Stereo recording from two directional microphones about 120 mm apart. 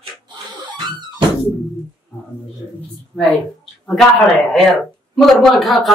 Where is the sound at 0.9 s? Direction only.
40° right (ahead or behind).